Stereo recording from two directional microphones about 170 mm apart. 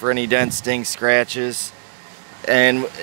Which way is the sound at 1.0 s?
35° right (ahead or behind).